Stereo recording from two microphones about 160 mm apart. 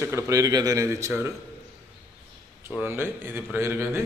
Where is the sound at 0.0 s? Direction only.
20° right (ahead or behind).